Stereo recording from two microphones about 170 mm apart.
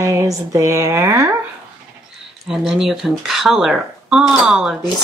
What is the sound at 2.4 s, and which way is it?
Speech, centre (ahead or behind).